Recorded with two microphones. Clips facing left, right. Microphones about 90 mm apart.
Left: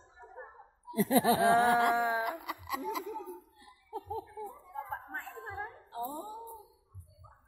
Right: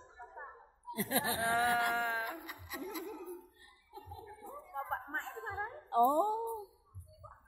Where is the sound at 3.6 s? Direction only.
65° left (ahead or behind); by 4.4 s 90° left.